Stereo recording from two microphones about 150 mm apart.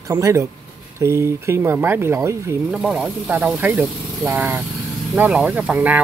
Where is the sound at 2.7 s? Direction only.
5° right (ahead or behind).